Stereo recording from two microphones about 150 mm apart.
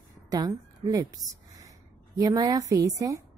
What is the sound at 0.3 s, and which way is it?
A woman's voice, 25° right (ahead or behind).